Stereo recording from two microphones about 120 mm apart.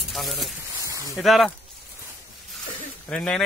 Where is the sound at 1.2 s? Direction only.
Centre (ahead or behind).